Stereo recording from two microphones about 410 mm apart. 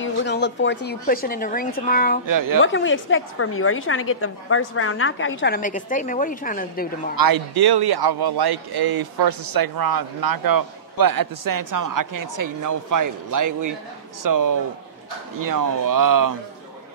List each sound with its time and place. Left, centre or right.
0.0 s a woman's voice: left
2.2 s speech: right
2.6 s a woman's voice: left
7.2 s speech: right